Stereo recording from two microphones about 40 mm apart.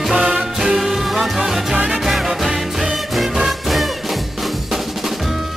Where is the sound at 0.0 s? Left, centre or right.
Centre.